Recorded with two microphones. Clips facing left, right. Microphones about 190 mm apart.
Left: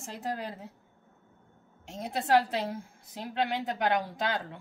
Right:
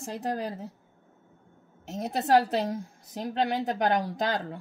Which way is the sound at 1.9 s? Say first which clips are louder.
Right 3 dB; 40° right (ahead or behind).